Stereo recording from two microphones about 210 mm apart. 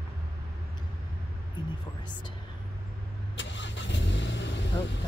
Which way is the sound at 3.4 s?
60° left (ahead or behind).